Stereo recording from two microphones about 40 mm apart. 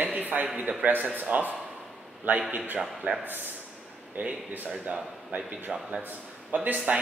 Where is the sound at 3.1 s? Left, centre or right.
Right.